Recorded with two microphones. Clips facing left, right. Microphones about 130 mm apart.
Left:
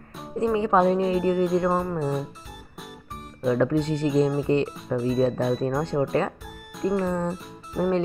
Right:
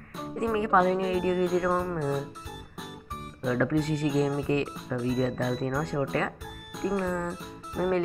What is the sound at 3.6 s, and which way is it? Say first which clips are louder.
Speech: left 1 dB; 25° left (ahead or behind).